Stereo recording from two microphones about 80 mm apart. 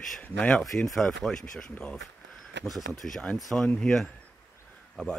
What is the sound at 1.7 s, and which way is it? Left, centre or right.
Speech, centre.